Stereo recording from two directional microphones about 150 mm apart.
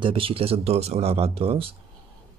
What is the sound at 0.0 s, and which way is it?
Speech, 35° right (ahead or behind).